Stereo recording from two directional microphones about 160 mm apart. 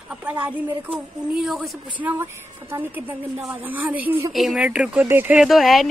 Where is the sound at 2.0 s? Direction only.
10° right (ahead or behind).